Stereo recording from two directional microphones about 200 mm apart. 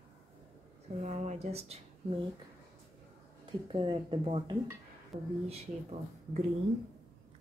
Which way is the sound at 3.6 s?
25° right (ahead or behind).